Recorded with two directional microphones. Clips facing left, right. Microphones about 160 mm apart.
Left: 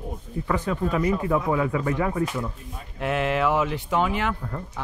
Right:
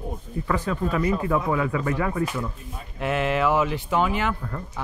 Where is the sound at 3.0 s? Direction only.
Centre (ahead or behind).